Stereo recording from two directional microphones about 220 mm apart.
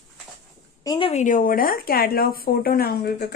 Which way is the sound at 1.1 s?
35° left (ahead or behind).